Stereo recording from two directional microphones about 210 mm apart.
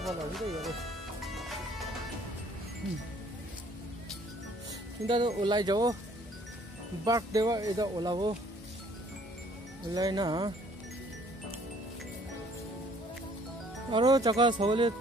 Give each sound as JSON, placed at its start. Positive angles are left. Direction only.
{"t": 0.0, "sound": "speech", "side_deg": 0}
{"t": 5.0, "sound": "speech", "side_deg": -25}
{"t": 7.1, "sound": "speech", "side_deg": -15}
{"t": 9.9, "sound": "speech", "side_deg": -20}
{"t": 13.9, "sound": "speech", "side_deg": -20}